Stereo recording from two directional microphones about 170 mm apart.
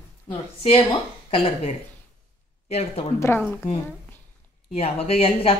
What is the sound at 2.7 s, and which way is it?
Speech, 40° left (ahead or behind).